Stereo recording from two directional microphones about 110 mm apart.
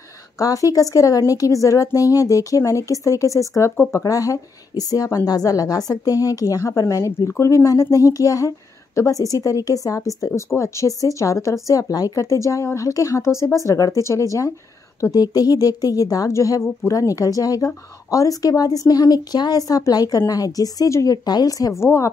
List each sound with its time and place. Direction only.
0.4 s a woman's voice: 30° left (ahead or behind)
4.0 s a woman's voice: 30° left (ahead or behind)